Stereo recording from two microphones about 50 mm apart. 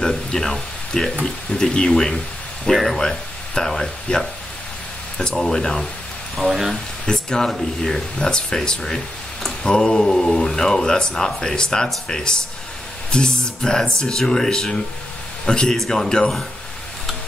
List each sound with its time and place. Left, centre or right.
0.0 s a sound: centre
1.2 s speech: centre
5.3 s speech: centre
6.3 s speech: centre
6.7 s speech: centre